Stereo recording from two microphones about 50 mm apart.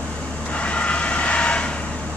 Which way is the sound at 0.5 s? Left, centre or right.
Left.